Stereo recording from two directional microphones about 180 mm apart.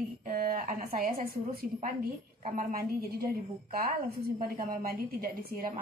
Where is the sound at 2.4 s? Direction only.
45° right (ahead or behind).